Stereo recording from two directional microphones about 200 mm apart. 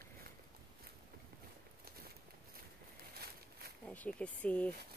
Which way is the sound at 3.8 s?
5° left (ahead or behind).